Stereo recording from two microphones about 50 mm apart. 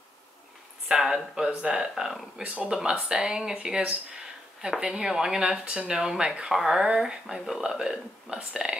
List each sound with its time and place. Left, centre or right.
0.8 s speech: centre